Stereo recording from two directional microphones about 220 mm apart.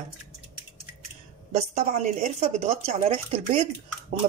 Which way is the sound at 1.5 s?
30° right (ahead or behind).